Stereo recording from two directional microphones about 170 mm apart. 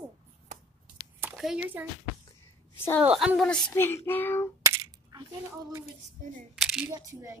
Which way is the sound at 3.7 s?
15° left (ahead or behind).